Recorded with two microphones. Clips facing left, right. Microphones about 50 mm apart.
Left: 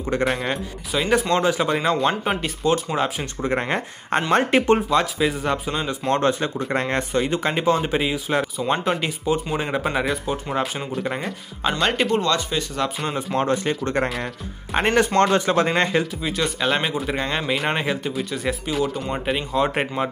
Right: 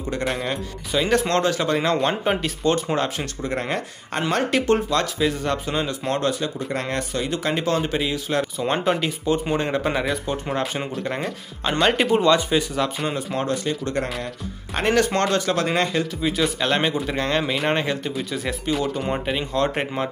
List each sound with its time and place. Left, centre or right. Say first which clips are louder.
0.2 s speech: left 2 dB; centre
3.4 s speech: left 3 dB; left
4.7 s speech: left 2 dB; centre
6.1 s speech: left 4 dB; left; by 12.2 s centre
12.2 s speech: right 4 dB; centre
12.7 s speech: right 1 dB; centre
13.4 s speech: left 4 dB; left
16.2 s speech: right 2 dB; centre